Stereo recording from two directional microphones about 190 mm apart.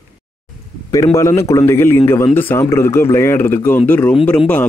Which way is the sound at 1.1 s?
15° left (ahead or behind).